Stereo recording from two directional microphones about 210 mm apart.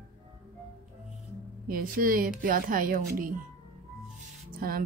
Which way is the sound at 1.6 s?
40° right (ahead or behind).